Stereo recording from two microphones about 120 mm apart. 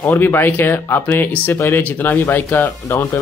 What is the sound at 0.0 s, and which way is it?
Speech, 15° left (ahead or behind).